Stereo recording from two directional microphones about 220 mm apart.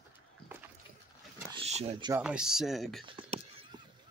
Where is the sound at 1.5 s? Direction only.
30° right (ahead or behind).